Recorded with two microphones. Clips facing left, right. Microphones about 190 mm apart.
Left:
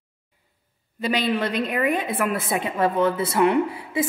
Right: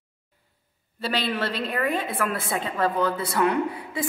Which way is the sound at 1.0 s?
15° left (ahead or behind).